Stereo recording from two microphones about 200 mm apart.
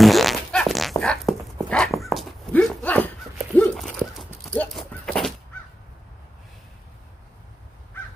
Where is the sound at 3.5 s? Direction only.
5° left (ahead or behind).